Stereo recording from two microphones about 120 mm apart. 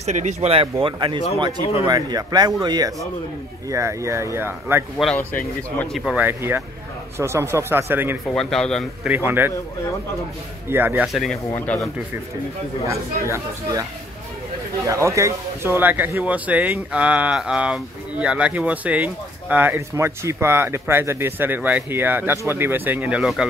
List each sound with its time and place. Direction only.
0.0 s speech: 75° right (ahead or behind); by 3.1 s 35° right (ahead or behind)
3.7 s speech: 25° right (ahead or behind)
4.9 s speech: centre (ahead or behind)
6.2 s speech: 20° right (ahead or behind)
8.3 s speech: 5° left (ahead or behind)
9.0 s speech: 15° right (ahead or behind)
10.7 s speech: 15° right (ahead or behind)
11.5 s speech: 15° left (ahead or behind)
12.8 s speech: 25° right (ahead or behind)
14.9 s speech: 25° right (ahead or behind)